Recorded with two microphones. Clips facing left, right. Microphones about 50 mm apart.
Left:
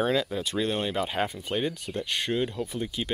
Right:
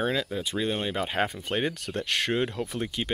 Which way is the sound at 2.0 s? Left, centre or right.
Right.